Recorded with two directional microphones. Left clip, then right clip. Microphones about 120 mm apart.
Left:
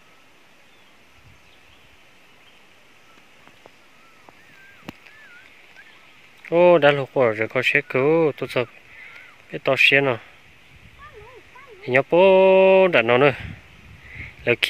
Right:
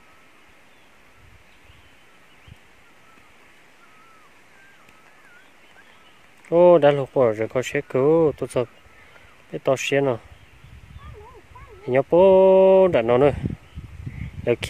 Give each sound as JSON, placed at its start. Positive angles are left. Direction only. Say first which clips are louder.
{"t": 6.5, "sound": "speech", "louder": "even", "side_deg": -25}
{"t": 11.8, "sound": "speech", "louder": "even", "side_deg": -25}